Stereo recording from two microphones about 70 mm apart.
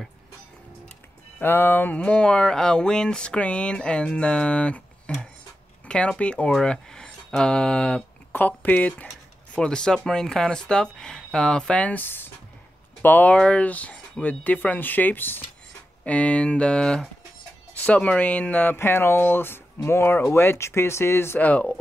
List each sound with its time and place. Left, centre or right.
1.4 s speech: left
9.6 s speech: centre
12.0 s speech: left
16.0 s speech: centre
18.8 s speech: left
21.5 s speech: centre